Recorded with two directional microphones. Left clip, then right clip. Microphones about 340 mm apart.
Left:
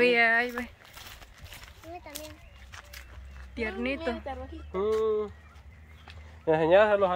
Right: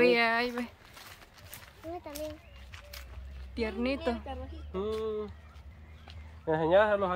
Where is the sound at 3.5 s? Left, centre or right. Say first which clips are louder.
Left 1 dB; centre.